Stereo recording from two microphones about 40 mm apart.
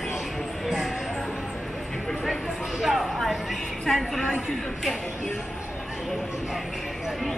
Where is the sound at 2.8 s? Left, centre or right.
Centre.